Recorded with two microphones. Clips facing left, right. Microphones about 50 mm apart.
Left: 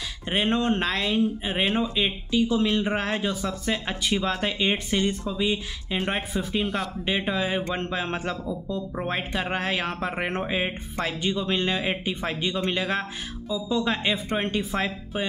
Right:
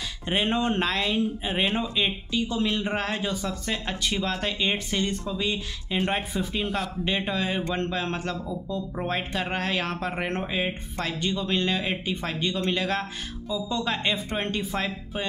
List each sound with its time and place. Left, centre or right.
0.5 s speech: centre
8.1 s a man's voice: left
8.5 s speech: centre